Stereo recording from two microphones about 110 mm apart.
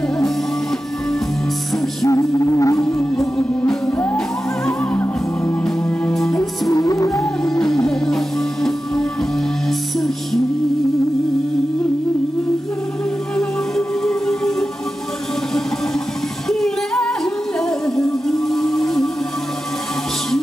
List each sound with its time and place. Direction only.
2.0 s music: 30° left (ahead or behind)
3.3 s music: 10° left (ahead or behind)
4.9 s music: 20° left (ahead or behind)
6.1 s music: 5° left (ahead or behind)
6.7 s music: 30° left (ahead or behind)
7.4 s music: 5° left (ahead or behind)
9.7 s music: centre (ahead or behind)
13.4 s music: 5° left (ahead or behind)
16.4 s music: 5° left (ahead or behind)